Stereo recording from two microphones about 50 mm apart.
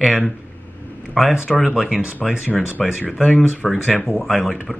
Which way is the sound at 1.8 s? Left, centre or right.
Centre.